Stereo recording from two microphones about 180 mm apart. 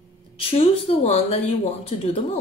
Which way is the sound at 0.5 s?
35° left (ahead or behind).